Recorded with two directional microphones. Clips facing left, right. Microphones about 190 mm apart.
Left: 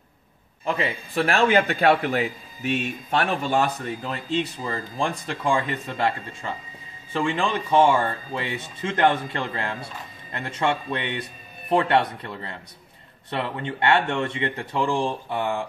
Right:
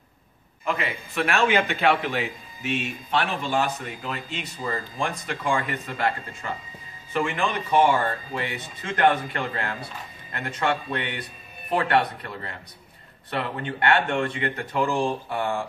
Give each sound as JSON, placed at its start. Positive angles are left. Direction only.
{"t": 0.7, "sound": "a man's voice", "side_deg": 30}